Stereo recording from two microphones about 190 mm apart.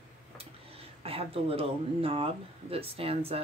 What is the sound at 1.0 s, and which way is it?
Speech, 30° right (ahead or behind).